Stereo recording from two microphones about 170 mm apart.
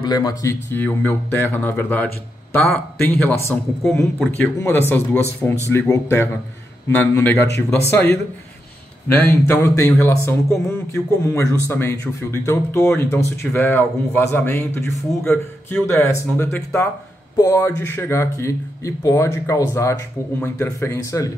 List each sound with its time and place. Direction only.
0.0 s speech: 25° left (ahead or behind)
9.2 s speech: 15° left (ahead or behind)